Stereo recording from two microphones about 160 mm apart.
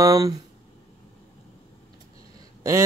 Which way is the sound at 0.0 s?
20° right (ahead or behind).